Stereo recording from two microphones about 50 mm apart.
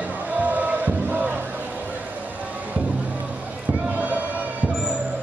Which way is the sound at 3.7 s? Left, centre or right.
Right.